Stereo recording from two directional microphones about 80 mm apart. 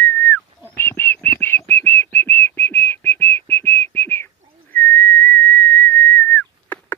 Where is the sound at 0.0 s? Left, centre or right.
Left.